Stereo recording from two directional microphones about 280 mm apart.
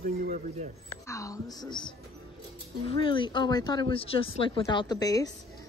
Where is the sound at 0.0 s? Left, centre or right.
Right.